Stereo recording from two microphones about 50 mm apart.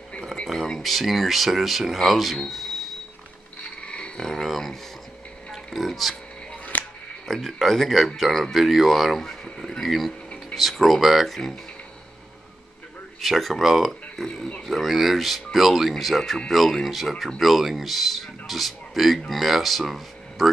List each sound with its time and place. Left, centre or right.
0.5 s a man's voice: centre
3.8 s a sound: left
4.2 s a sound: centre
5.5 s music: centre
6.5 s music: left
7.2 s a man's voice: centre
13.2 s a man's voice: centre
14.1 s a man's voice: centre